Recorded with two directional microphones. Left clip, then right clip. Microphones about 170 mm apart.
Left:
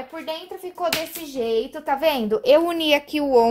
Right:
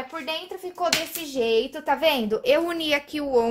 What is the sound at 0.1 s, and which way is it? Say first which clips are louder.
A child's voice: even; 20° left (ahead or behind).